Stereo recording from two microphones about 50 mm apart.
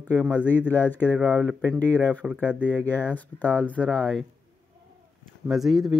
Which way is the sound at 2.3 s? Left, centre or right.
Right.